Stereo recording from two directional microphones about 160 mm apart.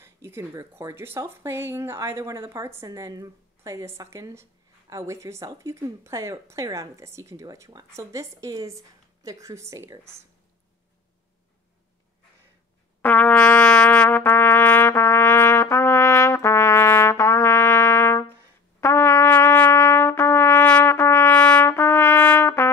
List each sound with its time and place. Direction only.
0.0 s speech: 15° right (ahead or behind)
13.0 s trumpet: 10° left (ahead or behind)